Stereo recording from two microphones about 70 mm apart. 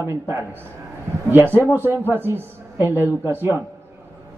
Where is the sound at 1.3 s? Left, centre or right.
Right.